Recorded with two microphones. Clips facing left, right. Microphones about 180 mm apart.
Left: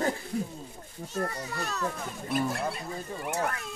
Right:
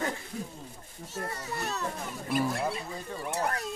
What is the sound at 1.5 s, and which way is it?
Speech, 20° right (ahead or behind).